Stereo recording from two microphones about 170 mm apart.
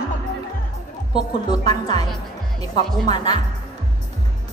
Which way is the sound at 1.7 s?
25° left (ahead or behind).